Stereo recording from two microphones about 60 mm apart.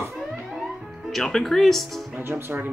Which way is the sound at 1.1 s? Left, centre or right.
Centre.